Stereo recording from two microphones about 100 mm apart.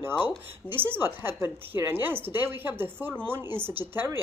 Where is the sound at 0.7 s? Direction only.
20° right (ahead or behind).